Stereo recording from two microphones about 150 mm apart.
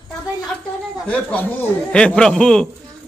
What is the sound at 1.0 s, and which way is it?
Speech, 10° left (ahead or behind).